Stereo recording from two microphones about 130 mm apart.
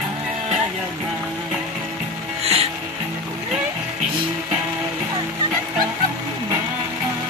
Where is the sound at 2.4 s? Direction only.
50° right (ahead or behind).